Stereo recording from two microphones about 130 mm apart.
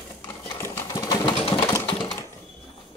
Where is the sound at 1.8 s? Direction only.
35° left (ahead or behind).